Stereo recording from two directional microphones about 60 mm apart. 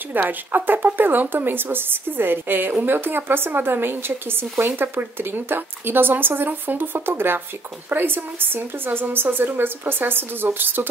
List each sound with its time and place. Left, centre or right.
0.1 s speech: right